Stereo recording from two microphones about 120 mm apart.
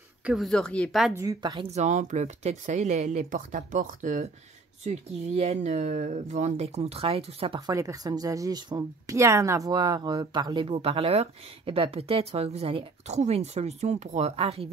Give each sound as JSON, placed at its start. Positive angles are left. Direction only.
{"t": 0.2, "sound": "speech", "side_deg": 0}
{"t": 1.1, "sound": "a woman's voice", "side_deg": -25}
{"t": 1.4, "sound": "speech", "side_deg": -40}
{"t": 1.7, "sound": "speech", "side_deg": -80}
{"t": 4.8, "sound": "speech", "side_deg": -70}
{"t": 7.6, "sound": "speech", "side_deg": -30}
{"t": 14.3, "sound": "speech", "side_deg": -55}